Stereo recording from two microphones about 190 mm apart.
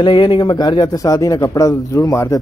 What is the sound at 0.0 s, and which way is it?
A man's voice, 25° left (ahead or behind).